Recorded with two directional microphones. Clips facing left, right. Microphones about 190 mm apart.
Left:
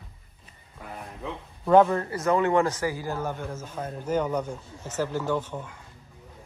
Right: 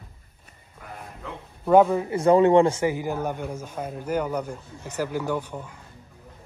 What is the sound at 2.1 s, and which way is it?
A man's voice, 30° right (ahead or behind).